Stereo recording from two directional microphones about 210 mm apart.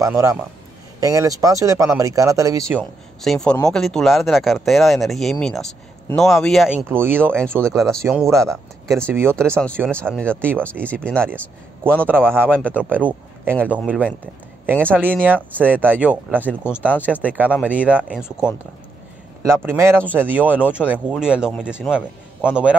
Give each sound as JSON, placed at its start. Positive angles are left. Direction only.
{"t": 0.0, "sound": "speech", "side_deg": -15}
{"t": 2.8, "sound": "a man's voice", "side_deg": 0}
{"t": 6.9, "sound": "speech", "side_deg": -10}
{"t": 7.6, "sound": "a man's voice", "side_deg": 0}
{"t": 8.3, "sound": "speech", "side_deg": -15}
{"t": 9.5, "sound": "a man's voice", "side_deg": 5}
{"t": 11.8, "sound": "speech", "side_deg": -10}
{"t": 19.4, "sound": "a man's voice", "side_deg": -10}